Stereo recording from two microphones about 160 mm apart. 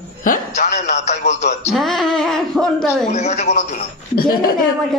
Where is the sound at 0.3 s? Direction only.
60° left (ahead or behind).